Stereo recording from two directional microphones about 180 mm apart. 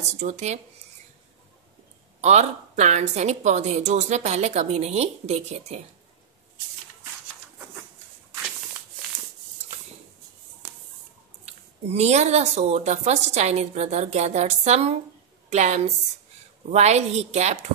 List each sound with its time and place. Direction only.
0.0 s speech: 40° right (ahead or behind)
2.2 s speech: 40° right (ahead or behind)
11.4 s speech: 35° right (ahead or behind)